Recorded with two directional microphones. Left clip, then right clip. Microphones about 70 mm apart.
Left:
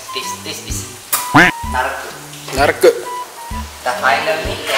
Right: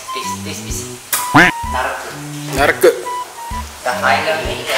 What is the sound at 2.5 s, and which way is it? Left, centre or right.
Speech, centre.